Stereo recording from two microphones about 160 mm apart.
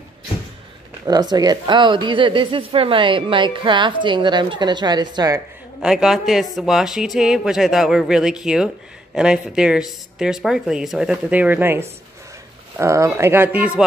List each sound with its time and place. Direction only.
1.0 s a woman's voice: 25° right (ahead or behind)
5.8 s speech: 5° right (ahead or behind)